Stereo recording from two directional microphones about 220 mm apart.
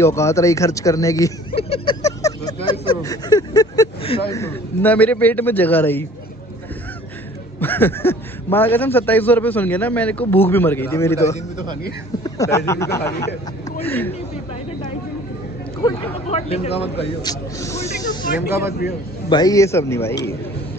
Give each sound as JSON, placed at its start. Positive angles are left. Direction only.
{"t": 0.0, "sound": "a man's voice", "side_deg": 15}
{"t": 1.5, "sound": "a sound", "side_deg": 25}
{"t": 4.3, "sound": "a man's voice", "side_deg": 10}
{"t": 7.6, "sound": "a man's voice", "side_deg": 10}
{"t": 16.3, "sound": "speech", "side_deg": 30}
{"t": 17.7, "sound": "speech", "side_deg": 35}
{"t": 19.2, "sound": "a man's voice", "side_deg": 20}